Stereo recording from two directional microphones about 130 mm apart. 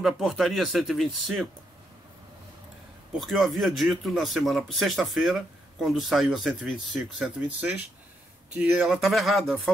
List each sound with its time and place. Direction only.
0.0 s speech: centre (ahead or behind)
3.2 s speech: centre (ahead or behind)